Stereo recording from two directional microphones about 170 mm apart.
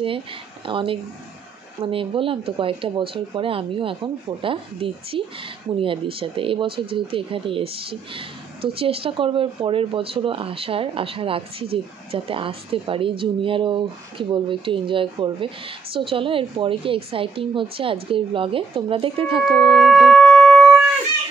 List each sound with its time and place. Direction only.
0.7 s speech: 30° right (ahead or behind)
19.4 s shofar: centre (ahead or behind)